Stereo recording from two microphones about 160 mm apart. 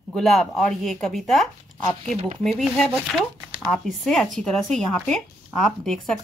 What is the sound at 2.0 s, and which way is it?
Speech, 45° right (ahead or behind).